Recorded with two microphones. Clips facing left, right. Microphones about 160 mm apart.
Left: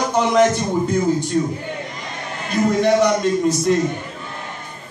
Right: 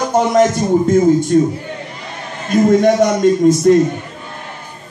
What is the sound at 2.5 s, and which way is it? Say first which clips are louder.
A man's voice: right 5 dB; 50° right (ahead or behind).